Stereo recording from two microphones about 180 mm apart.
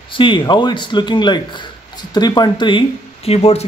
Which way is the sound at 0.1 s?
25° left (ahead or behind).